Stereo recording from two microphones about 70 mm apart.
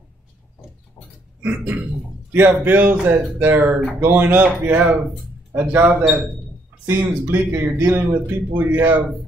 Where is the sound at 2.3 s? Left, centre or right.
Right.